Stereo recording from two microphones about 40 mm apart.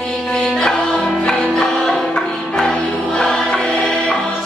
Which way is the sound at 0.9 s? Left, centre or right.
Centre.